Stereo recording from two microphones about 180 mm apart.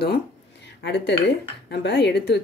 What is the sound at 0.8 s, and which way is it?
Speech, 75° left (ahead or behind).